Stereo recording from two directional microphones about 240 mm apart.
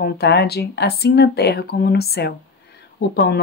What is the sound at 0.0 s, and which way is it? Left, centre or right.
Speech, left.